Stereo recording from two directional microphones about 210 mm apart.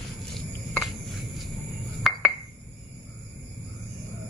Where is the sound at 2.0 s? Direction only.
Centre (ahead or behind).